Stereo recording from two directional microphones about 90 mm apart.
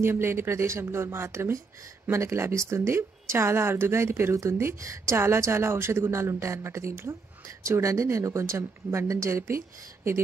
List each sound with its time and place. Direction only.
0.0 s a woman's voice: 25° right (ahead or behind)